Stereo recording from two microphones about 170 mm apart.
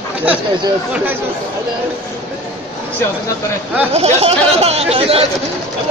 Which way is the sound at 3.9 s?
35° right (ahead or behind).